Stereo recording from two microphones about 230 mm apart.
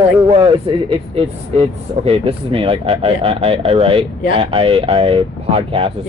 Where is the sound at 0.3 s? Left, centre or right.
Right.